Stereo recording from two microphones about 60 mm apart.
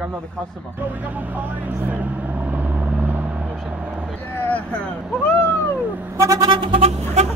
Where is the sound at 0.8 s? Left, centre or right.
Right.